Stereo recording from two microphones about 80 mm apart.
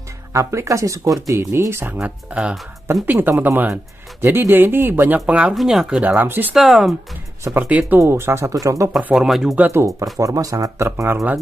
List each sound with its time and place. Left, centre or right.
0.3 s speech: right
2.0 s speech: centre
3.1 s speech: right
5.2 s speech: centre
5.5 s speech: centre
6.0 s speech: right
6.5 s speech: centre
7.5 s speech: centre
8.0 s speech: right
9.1 s speech: centre
9.7 s speech: right
10.1 s speech: right